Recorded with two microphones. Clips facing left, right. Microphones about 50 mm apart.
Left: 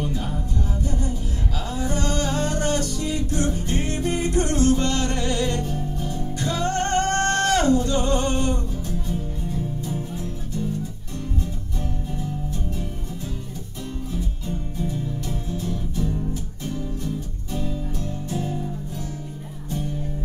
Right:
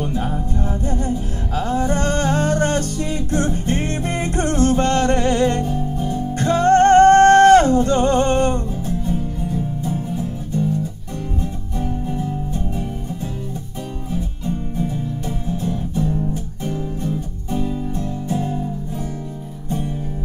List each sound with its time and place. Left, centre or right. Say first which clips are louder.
0.0 s music: right 5 dB; right
5.6 s music: right 6 dB; right
6.3 s music: right 11 dB; right
8.8 s music: right 6 dB; centre
11.8 s music: right 7 dB; centre
14.1 s music: right 9 dB; centre